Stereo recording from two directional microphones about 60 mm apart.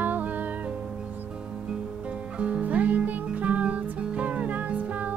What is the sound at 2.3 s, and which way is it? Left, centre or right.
Music, centre.